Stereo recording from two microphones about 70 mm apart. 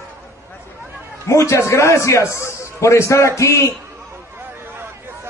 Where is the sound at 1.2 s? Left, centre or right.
Left.